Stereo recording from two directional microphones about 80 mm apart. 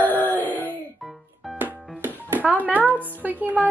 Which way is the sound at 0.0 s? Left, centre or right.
Left.